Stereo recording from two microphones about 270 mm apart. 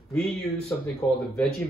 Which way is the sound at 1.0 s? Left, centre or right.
Centre.